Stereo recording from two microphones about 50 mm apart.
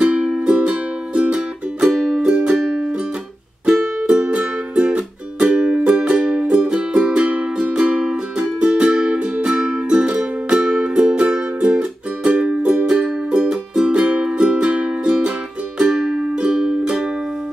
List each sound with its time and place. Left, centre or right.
0.0 s music: centre
1.9 s music: centre